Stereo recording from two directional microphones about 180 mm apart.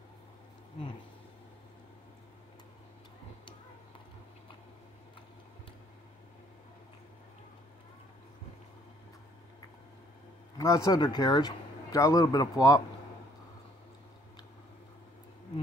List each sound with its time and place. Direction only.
10.6 s speech: 15° left (ahead or behind)